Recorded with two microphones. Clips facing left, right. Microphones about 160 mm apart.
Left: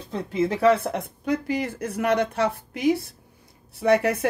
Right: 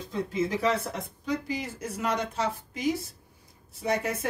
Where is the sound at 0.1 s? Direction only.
60° left (ahead or behind).